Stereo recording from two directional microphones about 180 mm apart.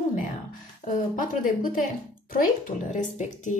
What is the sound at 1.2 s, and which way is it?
A woman's voice, 50° left (ahead or behind).